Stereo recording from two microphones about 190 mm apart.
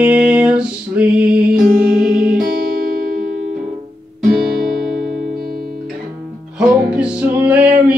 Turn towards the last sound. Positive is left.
turn(degrees=-5)  # may be behind; listen again after turning